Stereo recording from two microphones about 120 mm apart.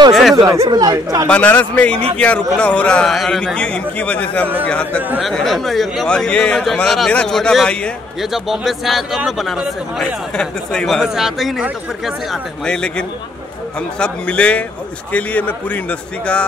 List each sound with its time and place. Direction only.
0.1 s speech: centre (ahead or behind)
0.7 s speech: 30° right (ahead or behind)
1.2 s a man's voice: 10° left (ahead or behind)